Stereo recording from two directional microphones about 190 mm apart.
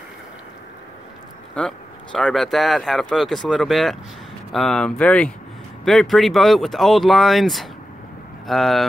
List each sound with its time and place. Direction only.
1.5 s speech: 5° left (ahead or behind)